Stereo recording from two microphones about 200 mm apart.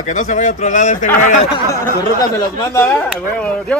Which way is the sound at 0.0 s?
40° left (ahead or behind).